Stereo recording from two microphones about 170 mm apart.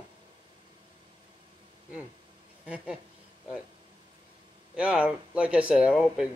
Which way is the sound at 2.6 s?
5° right (ahead or behind).